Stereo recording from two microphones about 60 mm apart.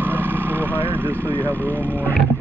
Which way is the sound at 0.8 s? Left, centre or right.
Right.